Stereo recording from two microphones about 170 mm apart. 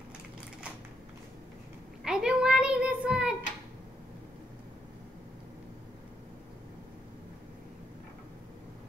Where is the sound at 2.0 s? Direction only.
5° right (ahead or behind).